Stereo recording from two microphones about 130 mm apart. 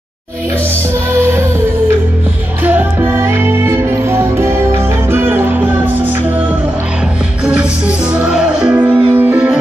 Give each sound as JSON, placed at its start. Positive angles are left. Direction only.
{"t": 1.1, "sound": "music", "side_deg": -20}
{"t": 2.6, "sound": "music", "side_deg": -15}
{"t": 8.1, "sound": "music", "side_deg": -5}